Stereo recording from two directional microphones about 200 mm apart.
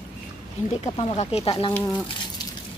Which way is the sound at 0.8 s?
35° left (ahead or behind).